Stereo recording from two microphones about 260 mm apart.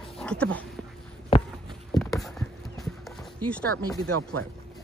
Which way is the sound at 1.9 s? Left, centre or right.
Centre.